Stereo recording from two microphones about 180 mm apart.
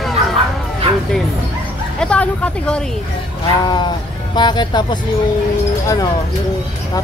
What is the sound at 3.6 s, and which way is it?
Speech, 25° left (ahead or behind).